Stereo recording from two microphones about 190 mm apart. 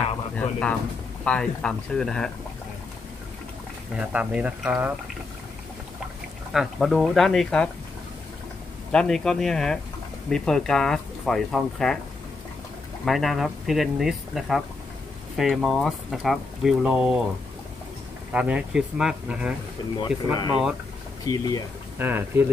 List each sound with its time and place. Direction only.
0.4 s speech: 5° left (ahead or behind)
4.1 s speech: 5° right (ahead or behind)
6.5 s speech: centre (ahead or behind)
8.9 s speech: 5° left (ahead or behind)
13.0 s speech: centre (ahead or behind)
18.3 s speech: 5° right (ahead or behind)
20.0 s speech: 20° left (ahead or behind)
21.9 s speech: 10° right (ahead or behind)